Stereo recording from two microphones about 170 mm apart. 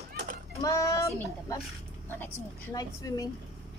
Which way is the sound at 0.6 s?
20° left (ahead or behind).